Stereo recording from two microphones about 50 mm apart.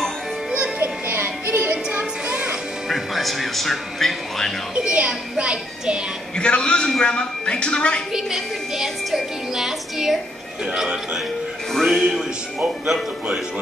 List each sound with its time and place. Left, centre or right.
0.7 s music: right
1.6 s music: right
2.9 s a woman's voice: centre
4.7 s speech: right
6.3 s a man's voice: centre
8.1 s a woman's voice: centre
11.7 s a woman's voice: centre